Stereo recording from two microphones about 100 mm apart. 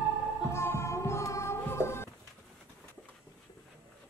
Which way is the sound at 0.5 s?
25° left (ahead or behind).